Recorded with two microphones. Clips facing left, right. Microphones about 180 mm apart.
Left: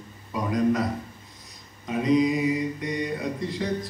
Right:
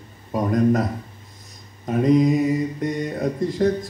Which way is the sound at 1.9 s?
50° right (ahead or behind).